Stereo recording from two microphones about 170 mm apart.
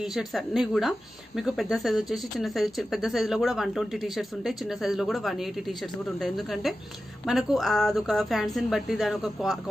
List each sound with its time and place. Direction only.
0.0 s speech: centre (ahead or behind)